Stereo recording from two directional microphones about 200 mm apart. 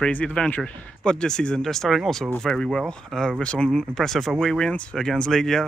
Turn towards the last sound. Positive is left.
turn(degrees=0)  # may be behind; listen again after turning